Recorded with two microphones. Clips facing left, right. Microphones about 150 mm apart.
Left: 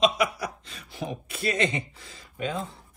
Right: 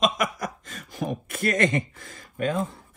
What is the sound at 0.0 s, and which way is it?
Chuckle, 45° right (ahead or behind).